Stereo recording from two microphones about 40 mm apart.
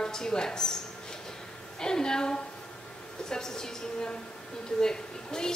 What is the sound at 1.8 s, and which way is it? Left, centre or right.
A woman's voice, centre.